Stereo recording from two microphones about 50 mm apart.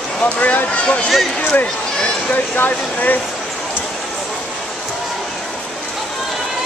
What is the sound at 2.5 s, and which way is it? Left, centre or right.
Speech, left.